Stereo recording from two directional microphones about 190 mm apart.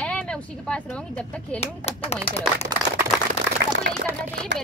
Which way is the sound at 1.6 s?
35° left (ahead or behind).